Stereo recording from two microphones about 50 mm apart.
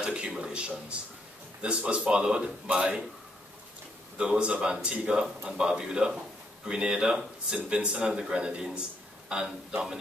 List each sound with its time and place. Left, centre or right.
0.0 s a sound: right
0.4 s a man's voice: right
4.2 s a man's voice: right